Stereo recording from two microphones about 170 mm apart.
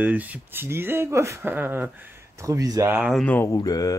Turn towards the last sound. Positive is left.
turn(degrees=20)  # may be behind; listen again after turning